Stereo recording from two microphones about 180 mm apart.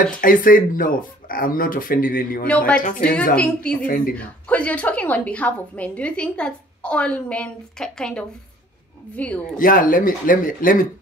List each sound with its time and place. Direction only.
0.0 s speech: 50° left (ahead or behind)
2.4 s a woman's voice: 5° left (ahead or behind)
3.8 s speech: 50° left (ahead or behind)
4.1 s a woman's voice: 5° left (ahead or behind)
9.6 s speech: 50° left (ahead or behind)